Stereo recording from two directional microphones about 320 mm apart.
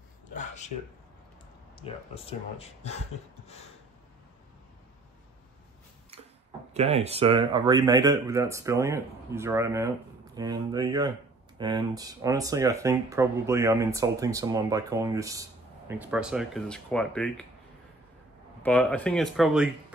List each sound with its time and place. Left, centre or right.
0.3 s a sound: left
1.8 s speech: centre
6.7 s speech: centre
18.6 s speech: centre